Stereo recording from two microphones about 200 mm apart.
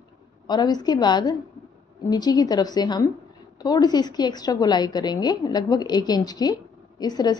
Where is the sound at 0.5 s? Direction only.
20° left (ahead or behind).